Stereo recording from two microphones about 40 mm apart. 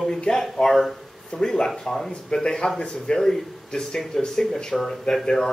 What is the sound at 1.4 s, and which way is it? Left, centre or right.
Speech, centre.